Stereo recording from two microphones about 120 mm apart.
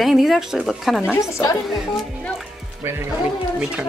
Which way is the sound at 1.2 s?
25° left (ahead or behind).